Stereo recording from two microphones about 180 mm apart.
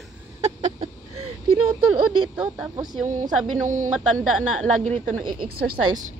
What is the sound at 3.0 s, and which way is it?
Speech, 45° right (ahead or behind).